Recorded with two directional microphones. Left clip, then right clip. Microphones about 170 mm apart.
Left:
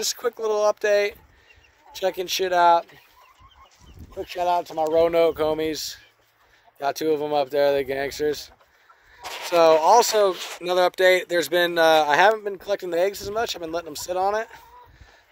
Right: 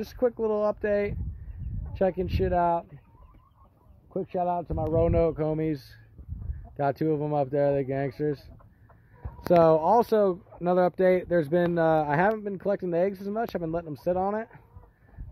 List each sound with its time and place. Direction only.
0.0 s speech: 30° left (ahead or behind)
4.2 s speech: 50° left (ahead or behind); by 8.5 s 30° left (ahead or behind)
9.5 s speech: 15° left (ahead or behind)